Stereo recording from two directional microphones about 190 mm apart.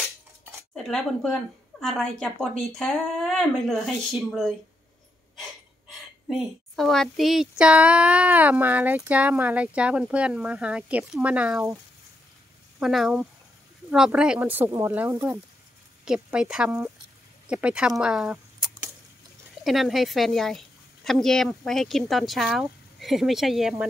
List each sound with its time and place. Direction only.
0.7 s a woman's voice: centre (ahead or behind)
12.7 s a woman's voice: centre (ahead or behind)